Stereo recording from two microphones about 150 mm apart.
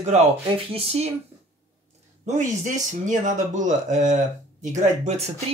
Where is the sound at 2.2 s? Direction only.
55° right (ahead or behind).